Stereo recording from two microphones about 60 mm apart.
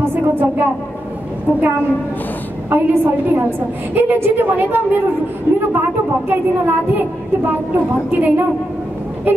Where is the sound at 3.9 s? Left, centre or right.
Right.